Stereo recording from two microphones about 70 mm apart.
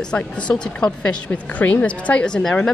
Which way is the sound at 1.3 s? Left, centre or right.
Left.